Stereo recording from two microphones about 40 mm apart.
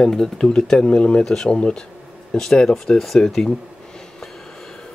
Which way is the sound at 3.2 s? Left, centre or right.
Centre.